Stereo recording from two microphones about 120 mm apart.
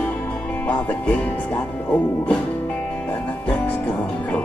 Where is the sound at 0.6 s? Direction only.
10° left (ahead or behind).